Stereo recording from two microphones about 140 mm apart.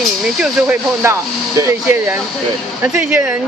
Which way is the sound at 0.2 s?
Centre (ahead or behind).